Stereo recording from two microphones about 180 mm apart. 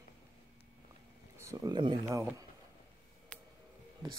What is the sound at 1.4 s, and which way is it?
Speech, 15° right (ahead or behind).